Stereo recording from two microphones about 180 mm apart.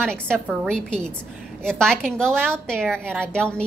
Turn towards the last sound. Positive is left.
turn(degrees=5)  # may be behind; listen again after turning